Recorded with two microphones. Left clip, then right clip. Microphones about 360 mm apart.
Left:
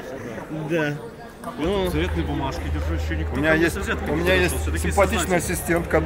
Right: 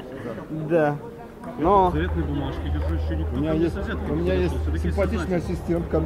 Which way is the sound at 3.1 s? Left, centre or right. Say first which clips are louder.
Left 6 dB; left.